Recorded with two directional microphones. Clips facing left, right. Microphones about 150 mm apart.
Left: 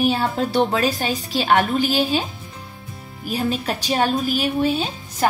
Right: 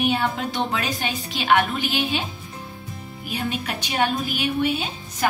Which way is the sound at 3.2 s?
35° left (ahead or behind).